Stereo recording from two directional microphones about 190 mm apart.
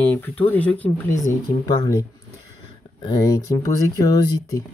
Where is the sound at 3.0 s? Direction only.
20° left (ahead or behind).